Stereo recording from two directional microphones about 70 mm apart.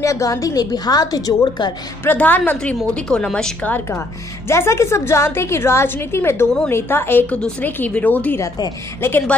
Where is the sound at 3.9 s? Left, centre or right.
Left.